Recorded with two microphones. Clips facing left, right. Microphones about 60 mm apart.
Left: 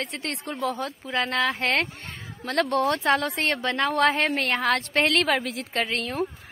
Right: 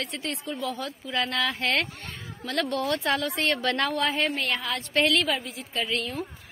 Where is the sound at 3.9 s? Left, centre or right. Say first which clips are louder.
Left 4 dB; left.